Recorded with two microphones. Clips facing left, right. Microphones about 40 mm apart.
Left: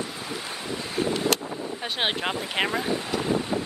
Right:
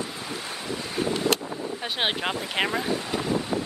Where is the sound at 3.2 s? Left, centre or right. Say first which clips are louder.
Left 1 dB; centre.